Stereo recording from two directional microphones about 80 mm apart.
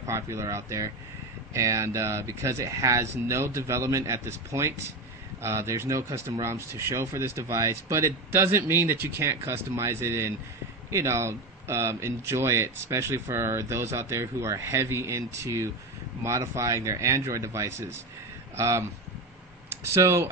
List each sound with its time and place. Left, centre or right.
0.0 s speech: right